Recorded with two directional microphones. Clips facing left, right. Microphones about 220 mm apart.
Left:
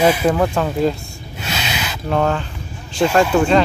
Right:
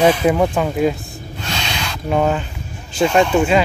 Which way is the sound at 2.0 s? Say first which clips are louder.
Right 1 dB; 10° right (ahead or behind).